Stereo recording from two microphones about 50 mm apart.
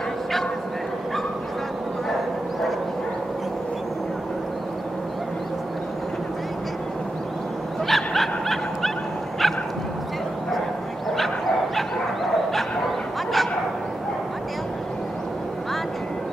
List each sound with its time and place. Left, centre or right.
7.8 s dog: centre
11.1 s bow-wow: centre